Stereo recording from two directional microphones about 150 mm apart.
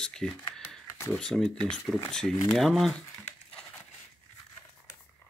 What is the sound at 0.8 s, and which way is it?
Computer keyboard, 20° left (ahead or behind).